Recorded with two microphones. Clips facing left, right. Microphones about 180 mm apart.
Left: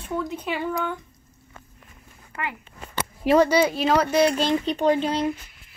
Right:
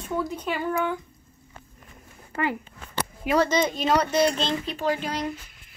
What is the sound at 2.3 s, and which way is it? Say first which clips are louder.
Speech: right 6 dB; 35° right (ahead or behind).